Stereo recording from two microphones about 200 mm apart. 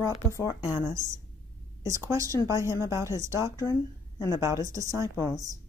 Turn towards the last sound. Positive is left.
turn(degrees=15)  # may be behind; listen again after turning